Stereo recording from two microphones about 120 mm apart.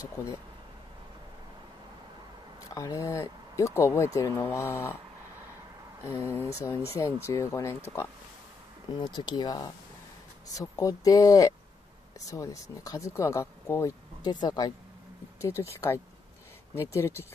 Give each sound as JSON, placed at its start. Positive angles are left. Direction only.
{"t": 2.7, "sound": "speech", "side_deg": 30}
{"t": 6.3, "sound": "speech", "side_deg": 20}
{"t": 8.9, "sound": "speech", "side_deg": 40}
{"t": 15.4, "sound": "speech", "side_deg": 25}